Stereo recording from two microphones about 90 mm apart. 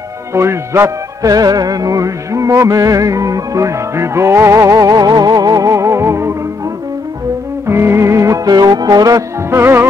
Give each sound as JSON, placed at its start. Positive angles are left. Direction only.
{"t": 0.3, "sound": "music", "side_deg": -30}
{"t": 7.6, "sound": "music", "side_deg": -30}
{"t": 9.6, "sound": "music", "side_deg": -25}